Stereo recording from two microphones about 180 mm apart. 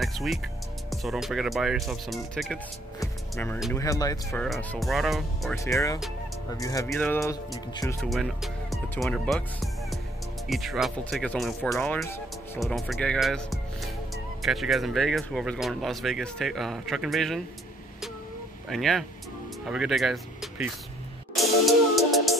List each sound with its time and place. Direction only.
0.0 s speech: centre (ahead or behind)
3.0 s music: 15° left (ahead or behind)
3.7 s speech: 20° left (ahead or behind)
4.4 s speech: 5° left (ahead or behind)
5.6 s speech: 15° left (ahead or behind)
6.9 s speech: 5° left (ahead or behind)
8.1 s speech: centre (ahead or behind)
18.7 s speech: centre (ahead or behind)
21.4 s music: centre (ahead or behind)